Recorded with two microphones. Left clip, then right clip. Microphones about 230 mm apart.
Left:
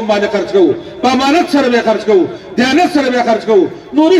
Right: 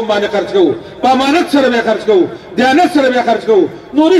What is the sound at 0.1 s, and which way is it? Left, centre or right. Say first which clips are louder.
A man's voice: left 2 dB; left.